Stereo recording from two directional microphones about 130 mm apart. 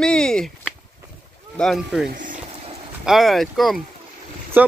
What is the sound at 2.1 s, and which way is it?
Music, 90° right.